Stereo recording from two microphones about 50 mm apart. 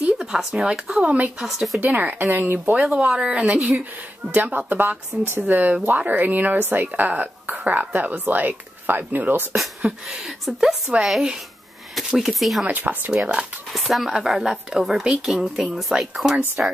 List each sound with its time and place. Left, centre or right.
0.2 s speech: centre
1.4 s speech: centre
1.8 s a woman's voice: right
2.2 s speech: right
2.7 s a woman's voice: centre; by 9.6 s right
10.0 s speech: centre
12.6 s a woman's voice: right
13.7 s speech: centre